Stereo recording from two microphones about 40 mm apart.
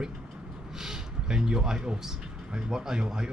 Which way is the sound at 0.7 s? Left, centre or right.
Centre.